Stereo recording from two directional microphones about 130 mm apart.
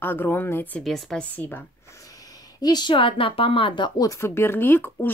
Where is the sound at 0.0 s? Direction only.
15° left (ahead or behind).